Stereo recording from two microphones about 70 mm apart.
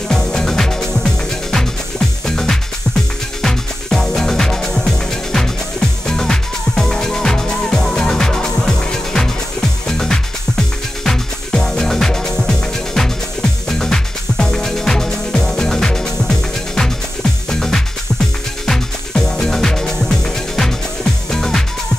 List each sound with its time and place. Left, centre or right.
0.1 s music: centre
2.2 s music: centre